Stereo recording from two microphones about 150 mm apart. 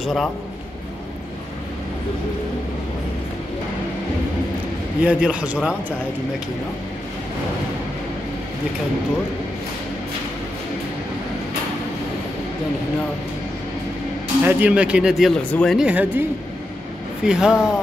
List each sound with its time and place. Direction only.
0.0 s a man's voice: centre (ahead or behind)
5.0 s a man's voice: 10° right (ahead or behind)
14.4 s a man's voice: 10° right (ahead or behind); by 15.8 s 5° left (ahead or behind)
15.8 s a man's voice: 10° right (ahead or behind)
17.3 s speech: 5° right (ahead or behind)